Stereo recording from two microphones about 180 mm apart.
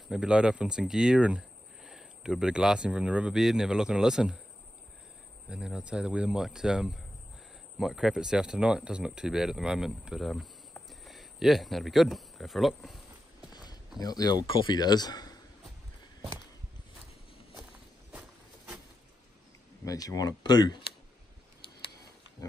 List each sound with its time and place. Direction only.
0.1 s speech: 5° right (ahead or behind)
5.5 s speech: 5° right (ahead or behind)
13.5 s speech: 25° left (ahead or behind)
19.8 s speech: 20° left (ahead or behind)